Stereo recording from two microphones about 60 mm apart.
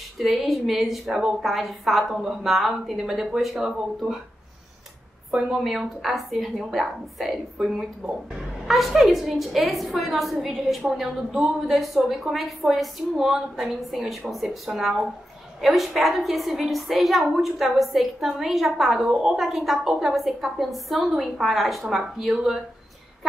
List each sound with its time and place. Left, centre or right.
0.2 s a woman's voice: centre
5.3 s a woman's voice: centre
8.0 s speech: centre
8.6 s a woman's voice: centre